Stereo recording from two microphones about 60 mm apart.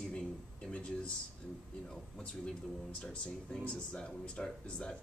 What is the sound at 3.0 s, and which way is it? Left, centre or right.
Speech, centre.